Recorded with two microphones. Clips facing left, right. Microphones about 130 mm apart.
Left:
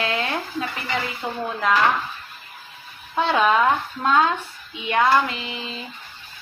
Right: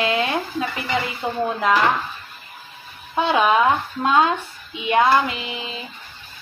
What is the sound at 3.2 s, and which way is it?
A woman's voice, 10° right (ahead or behind).